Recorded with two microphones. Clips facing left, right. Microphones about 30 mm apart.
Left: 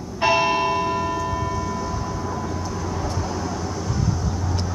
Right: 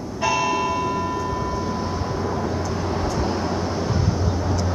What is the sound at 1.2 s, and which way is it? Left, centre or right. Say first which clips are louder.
Train: even; centre.